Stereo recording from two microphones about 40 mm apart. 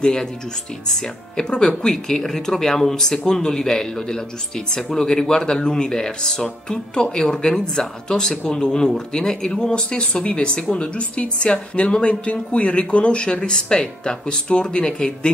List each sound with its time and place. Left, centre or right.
0.0 s speech: centre